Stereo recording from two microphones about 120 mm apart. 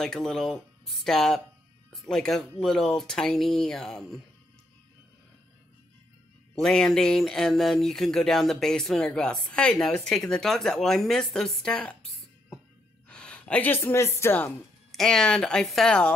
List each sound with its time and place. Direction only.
0.0 s speech: 5° left (ahead or behind)
6.5 s speech: 5° left (ahead or behind)
14.9 s speech: 5° left (ahead or behind)